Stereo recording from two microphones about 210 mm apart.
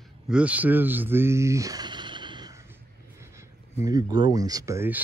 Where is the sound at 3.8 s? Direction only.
15° right (ahead or behind).